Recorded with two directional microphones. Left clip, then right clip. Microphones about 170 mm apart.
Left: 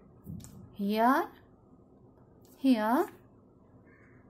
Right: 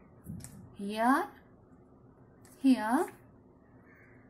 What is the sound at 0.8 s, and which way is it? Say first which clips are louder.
Speech: left 3 dB; 45° left (ahead or behind).